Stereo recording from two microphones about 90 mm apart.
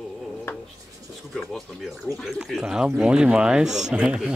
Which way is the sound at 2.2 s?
Centre (ahead or behind).